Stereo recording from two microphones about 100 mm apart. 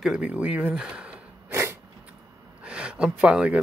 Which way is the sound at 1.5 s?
25° right (ahead or behind).